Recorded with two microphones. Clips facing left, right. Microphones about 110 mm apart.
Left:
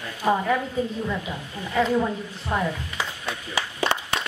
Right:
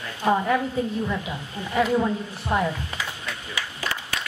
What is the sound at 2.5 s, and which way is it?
Speech, 20° right (ahead or behind).